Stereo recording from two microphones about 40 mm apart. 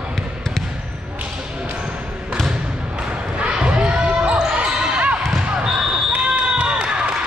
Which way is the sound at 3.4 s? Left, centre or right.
Right.